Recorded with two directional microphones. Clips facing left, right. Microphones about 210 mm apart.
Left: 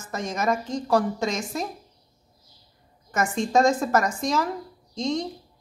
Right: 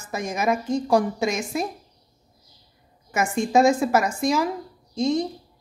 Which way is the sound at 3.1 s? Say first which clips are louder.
Right 2 dB; 10° right (ahead or behind).